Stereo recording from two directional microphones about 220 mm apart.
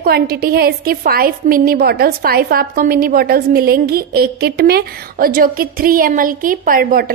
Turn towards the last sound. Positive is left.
turn(degrees=-40)  # may be behind; listen again after turning